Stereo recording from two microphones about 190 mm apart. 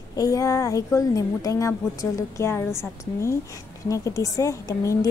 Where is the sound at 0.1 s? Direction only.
20° left (ahead or behind).